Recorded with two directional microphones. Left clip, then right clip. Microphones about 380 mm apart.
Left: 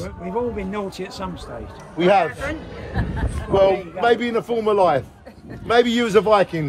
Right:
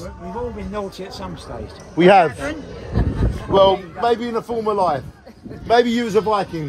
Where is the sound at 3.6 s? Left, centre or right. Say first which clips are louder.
Right 1 dB; centre.